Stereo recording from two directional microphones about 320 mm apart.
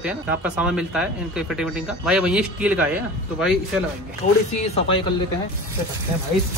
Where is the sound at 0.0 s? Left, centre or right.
Centre.